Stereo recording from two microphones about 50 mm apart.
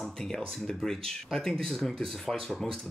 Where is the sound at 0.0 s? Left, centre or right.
Centre.